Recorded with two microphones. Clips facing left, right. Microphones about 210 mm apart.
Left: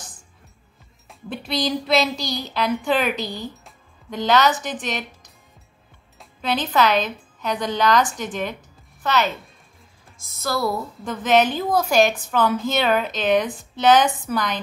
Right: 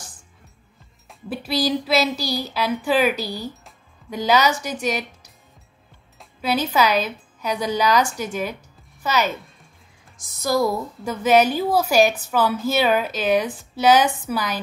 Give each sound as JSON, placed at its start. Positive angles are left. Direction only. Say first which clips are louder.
{"t": 1.0, "sound": "a woman's voice", "louder": "right 2 dB", "side_deg": -5}
{"t": 10.3, "sound": "a woman's voice", "louder": "right 3 dB", "side_deg": -15}